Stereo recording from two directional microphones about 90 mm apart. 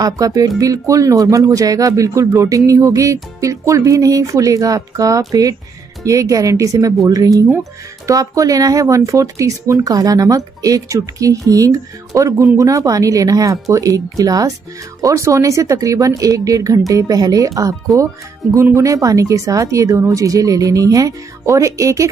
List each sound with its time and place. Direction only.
0.0 s speech: 40° right (ahead or behind)